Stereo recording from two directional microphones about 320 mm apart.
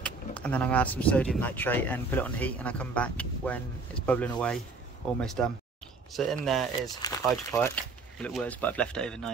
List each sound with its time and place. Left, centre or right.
0.0 s speech: centre